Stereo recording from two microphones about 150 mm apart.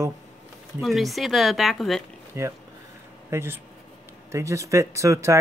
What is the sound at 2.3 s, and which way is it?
Speech, 20° right (ahead or behind).